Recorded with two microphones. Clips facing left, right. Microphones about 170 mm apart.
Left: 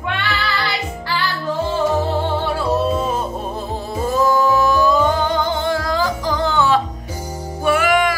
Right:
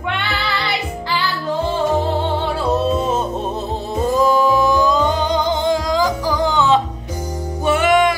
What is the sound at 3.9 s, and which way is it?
Music, 15° right (ahead or behind).